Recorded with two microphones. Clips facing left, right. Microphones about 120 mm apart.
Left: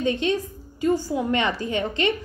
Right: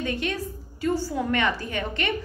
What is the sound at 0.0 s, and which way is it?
A woman's voice, 20° left (ahead or behind).